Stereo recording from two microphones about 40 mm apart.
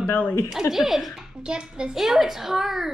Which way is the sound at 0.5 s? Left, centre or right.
Centre.